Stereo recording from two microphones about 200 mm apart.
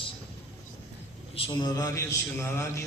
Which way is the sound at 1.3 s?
25° left (ahead or behind).